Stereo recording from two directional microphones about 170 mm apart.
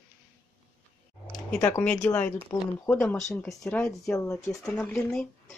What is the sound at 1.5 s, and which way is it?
Speech, 10° left (ahead or behind).